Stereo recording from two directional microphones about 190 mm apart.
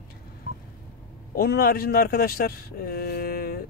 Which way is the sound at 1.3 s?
50° left (ahead or behind).